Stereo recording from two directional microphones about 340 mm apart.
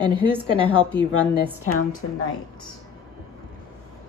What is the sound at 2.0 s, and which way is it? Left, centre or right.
Speech, left.